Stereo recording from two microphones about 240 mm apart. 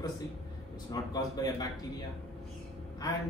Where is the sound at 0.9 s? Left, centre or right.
Centre.